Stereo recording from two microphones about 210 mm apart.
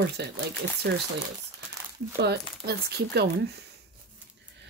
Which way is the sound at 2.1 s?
50° right (ahead or behind).